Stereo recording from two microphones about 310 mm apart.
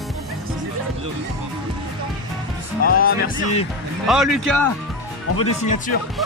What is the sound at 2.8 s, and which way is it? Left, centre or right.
Speech, left.